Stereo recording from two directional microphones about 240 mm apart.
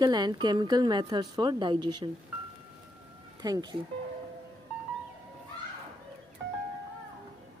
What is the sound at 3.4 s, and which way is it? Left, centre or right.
Speech, centre.